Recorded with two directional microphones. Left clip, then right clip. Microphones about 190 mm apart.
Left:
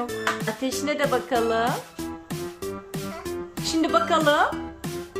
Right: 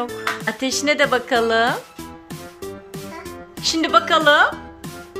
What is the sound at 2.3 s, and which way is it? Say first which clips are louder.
Music: even; centre (ahead or behind).